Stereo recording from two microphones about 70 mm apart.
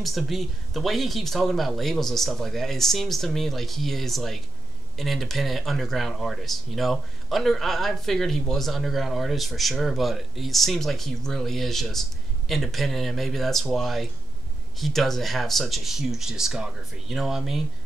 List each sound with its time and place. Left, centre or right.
0.0 s speech: centre